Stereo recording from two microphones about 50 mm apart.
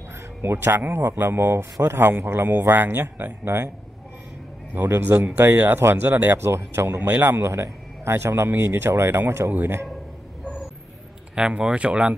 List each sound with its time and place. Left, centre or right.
0.4 s a man's voice: right
4.7 s a man's voice: right
6.0 s a man's voice: right
6.3 s speech: right
7.0 s a man's voice: right
7.2 s speech: right
9.5 s a man's voice: right
11.3 s speech: centre